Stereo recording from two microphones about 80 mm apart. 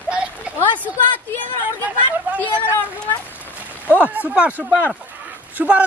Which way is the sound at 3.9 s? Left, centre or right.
Centre.